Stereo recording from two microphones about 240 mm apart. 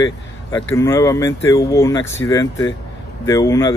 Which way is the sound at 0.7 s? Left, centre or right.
Centre.